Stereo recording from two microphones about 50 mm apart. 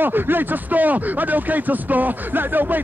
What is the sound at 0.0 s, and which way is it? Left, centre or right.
Speech, right.